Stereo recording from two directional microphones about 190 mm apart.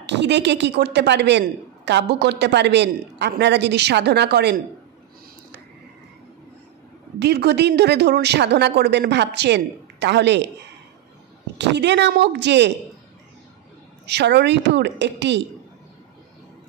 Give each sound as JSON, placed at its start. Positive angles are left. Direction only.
{"t": 0.0, "sound": "a woman's voice", "side_deg": -65}
{"t": 7.2, "sound": "a woman's voice", "side_deg": -60}
{"t": 11.5, "sound": "a woman's voice", "side_deg": -65}
{"t": 14.0, "sound": "a woman's voice", "side_deg": -65}